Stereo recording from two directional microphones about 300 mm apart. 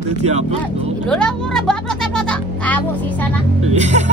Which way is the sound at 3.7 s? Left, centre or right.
Right.